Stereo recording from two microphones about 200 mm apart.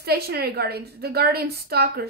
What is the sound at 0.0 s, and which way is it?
A woman's voice, 55° right (ahead or behind).